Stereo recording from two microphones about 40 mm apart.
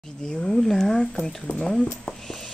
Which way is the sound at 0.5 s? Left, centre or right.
Centre.